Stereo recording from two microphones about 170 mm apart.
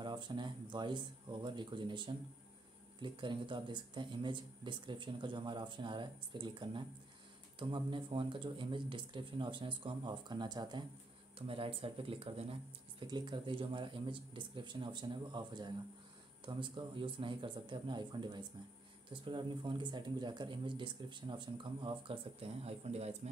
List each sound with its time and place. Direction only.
0.0 s speech: 25° right (ahead or behind)